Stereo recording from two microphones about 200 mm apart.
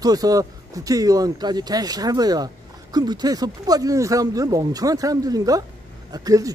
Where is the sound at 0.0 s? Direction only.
20° right (ahead or behind).